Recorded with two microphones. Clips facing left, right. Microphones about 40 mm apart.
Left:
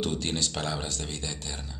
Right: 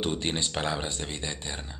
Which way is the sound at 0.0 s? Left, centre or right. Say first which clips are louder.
Right 1 dB; right.